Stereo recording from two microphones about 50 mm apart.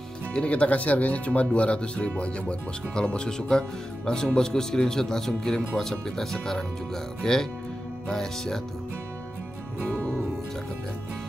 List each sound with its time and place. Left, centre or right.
0.3 s speech: left